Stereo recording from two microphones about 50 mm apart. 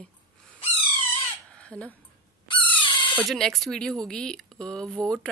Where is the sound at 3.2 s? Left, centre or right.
Centre.